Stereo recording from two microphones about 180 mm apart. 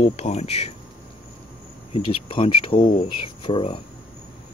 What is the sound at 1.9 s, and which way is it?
Speech, 30° left (ahead or behind).